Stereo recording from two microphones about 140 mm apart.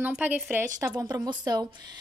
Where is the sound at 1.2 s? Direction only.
30° right (ahead or behind).